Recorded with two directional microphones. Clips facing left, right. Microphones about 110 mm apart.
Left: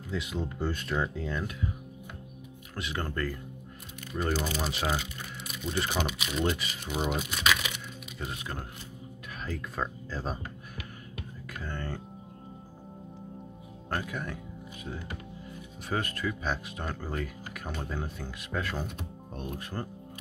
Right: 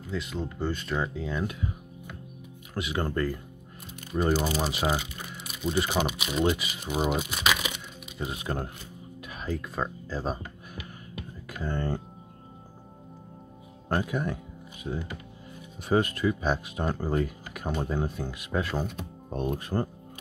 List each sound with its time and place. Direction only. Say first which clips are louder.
0.1 s speech: right 1 dB; 5° left (ahead or behind)
2.7 s speech: right 5 dB; 10° right (ahead or behind)
4.4 s speech: right 4 dB; 15° right (ahead or behind)
9.4 s speech: right 3 dB; 10° right (ahead or behind)
11.5 s speech: right 7 dB; 20° right (ahead or behind)
13.8 s speech: right 6 dB; 20° right (ahead or behind)
19.5 s speech: right 6 dB; 30° right (ahead or behind)